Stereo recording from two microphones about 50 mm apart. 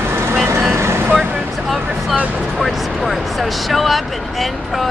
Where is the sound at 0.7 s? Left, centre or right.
Right.